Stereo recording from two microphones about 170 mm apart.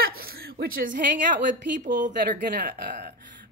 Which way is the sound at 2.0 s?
50° right (ahead or behind).